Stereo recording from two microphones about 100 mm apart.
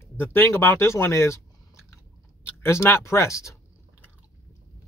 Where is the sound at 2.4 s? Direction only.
25° left (ahead or behind).